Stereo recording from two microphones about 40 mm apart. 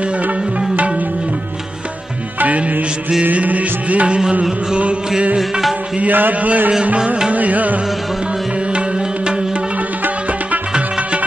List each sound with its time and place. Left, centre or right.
3.3 s music: right
6.1 s a man's voice: right
7.3 s music: right